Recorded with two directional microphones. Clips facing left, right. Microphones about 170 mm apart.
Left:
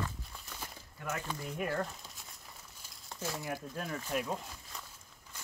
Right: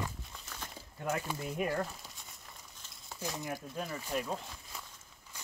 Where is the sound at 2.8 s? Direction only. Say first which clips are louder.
Even; 10° left (ahead or behind).